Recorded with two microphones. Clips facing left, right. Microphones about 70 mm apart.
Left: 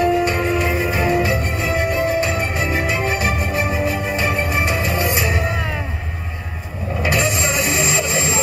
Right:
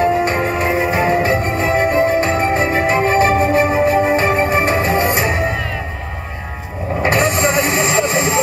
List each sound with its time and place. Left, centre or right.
0.0 s music: right
7.0 s vehicle: right